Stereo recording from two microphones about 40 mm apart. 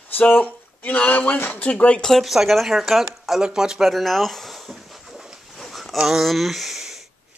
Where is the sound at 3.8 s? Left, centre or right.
Centre.